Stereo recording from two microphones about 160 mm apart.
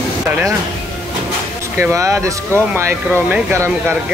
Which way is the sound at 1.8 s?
20° right (ahead or behind).